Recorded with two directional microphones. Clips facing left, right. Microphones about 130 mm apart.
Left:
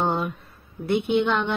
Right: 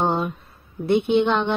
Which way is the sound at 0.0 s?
25° right (ahead or behind).